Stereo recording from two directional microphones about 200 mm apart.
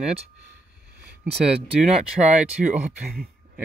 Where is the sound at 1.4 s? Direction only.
5° right (ahead or behind).